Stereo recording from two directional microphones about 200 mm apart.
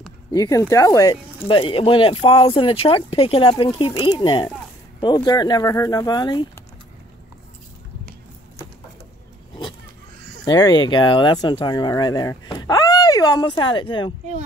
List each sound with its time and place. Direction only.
0.3 s speech: 15° left (ahead or behind)
10.4 s speech: 20° left (ahead or behind)